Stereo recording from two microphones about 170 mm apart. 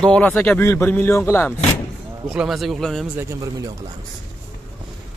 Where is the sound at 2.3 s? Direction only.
5° right (ahead or behind).